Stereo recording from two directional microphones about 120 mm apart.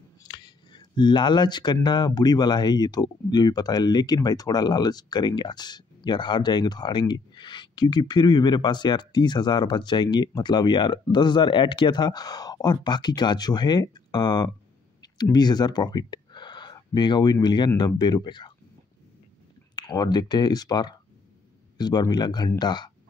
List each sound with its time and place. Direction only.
0.2 s speech: 35° left (ahead or behind)
19.7 s speech: 35° left (ahead or behind)